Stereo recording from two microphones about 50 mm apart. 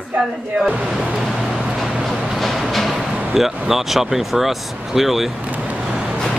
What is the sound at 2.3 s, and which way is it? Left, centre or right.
Music, centre.